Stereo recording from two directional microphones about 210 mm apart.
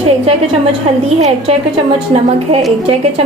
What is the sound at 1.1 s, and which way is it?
Speech, 30° right (ahead or behind).